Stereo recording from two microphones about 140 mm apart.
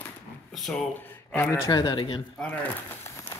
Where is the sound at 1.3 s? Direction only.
15° left (ahead or behind).